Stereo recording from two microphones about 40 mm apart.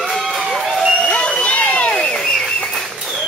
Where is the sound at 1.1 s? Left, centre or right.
Left.